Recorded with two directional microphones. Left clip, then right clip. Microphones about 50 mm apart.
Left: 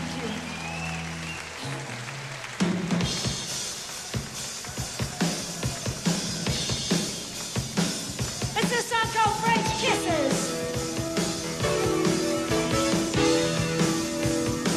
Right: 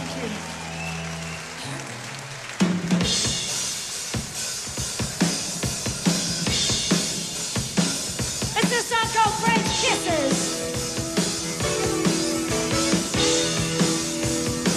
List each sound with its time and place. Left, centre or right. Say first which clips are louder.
2.6 s drum kit: right 4 dB; left
5.2 s music: right 4 dB; left
8.4 s music: right 3 dB; left